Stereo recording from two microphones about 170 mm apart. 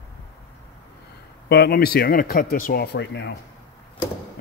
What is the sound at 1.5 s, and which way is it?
Speech, 65° left (ahead or behind).